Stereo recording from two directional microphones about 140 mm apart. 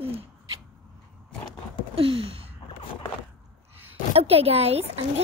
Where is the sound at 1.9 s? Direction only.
40° right (ahead or behind).